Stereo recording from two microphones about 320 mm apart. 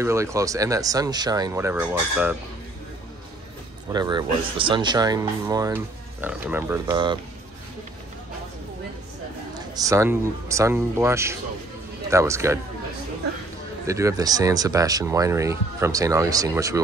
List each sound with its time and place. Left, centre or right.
0.0 s speech: centre
3.9 s speech: centre
9.5 s speech: centre
13.8 s speech: centre